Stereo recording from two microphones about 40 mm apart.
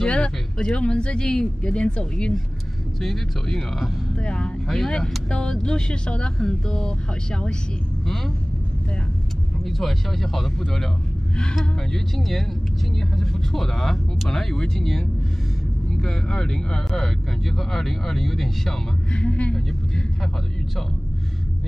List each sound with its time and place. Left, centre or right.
0.0 s speech: left
3.0 s speech: centre
4.2 s speech: left
4.6 s speech: centre
9.7 s speech: centre
12.2 s speech: centre
16.0 s speech: centre
19.1 s speech: left